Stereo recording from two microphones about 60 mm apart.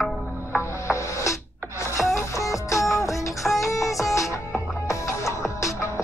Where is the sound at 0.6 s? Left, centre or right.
Left.